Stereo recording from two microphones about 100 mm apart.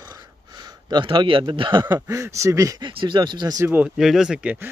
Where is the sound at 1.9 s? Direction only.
25° right (ahead or behind).